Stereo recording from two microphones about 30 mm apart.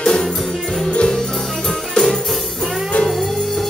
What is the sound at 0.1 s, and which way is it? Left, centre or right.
Music, centre.